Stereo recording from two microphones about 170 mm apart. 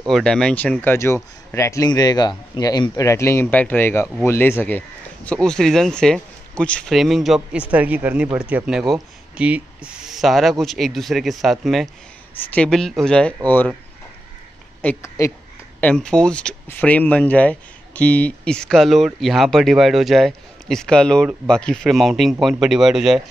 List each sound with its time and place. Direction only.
0.1 s speech: 5° left (ahead or behind)
14.8 s speech: 15° left (ahead or behind)
15.8 s speech: 5° left (ahead or behind)